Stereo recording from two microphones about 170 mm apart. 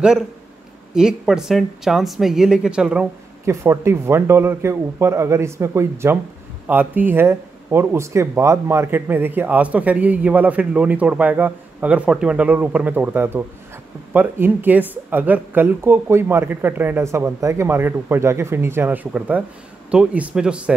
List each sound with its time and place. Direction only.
0.9 s speech: 5° right (ahead or behind)
3.4 s speech: 15° right (ahead or behind)